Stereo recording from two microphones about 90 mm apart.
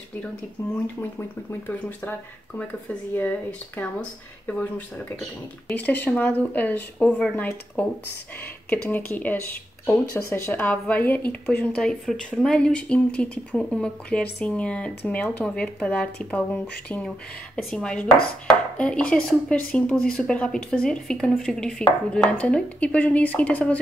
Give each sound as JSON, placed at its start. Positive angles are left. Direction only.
{"t": 0.6, "sound": "a woman's voice", "side_deg": 30}
{"t": 17.7, "sound": "speech", "side_deg": 10}